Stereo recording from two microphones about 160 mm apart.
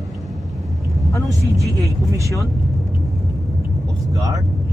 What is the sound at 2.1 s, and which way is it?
Speech, 20° right (ahead or behind).